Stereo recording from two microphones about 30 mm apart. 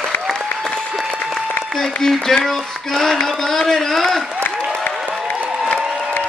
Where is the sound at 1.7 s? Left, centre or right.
Centre.